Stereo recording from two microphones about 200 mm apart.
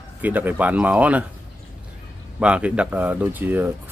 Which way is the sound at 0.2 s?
10° right (ahead or behind).